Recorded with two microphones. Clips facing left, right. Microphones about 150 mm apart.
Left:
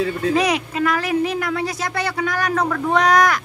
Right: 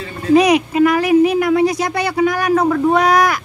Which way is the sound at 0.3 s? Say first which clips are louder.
Right 12 dB; 15° right (ahead or behind).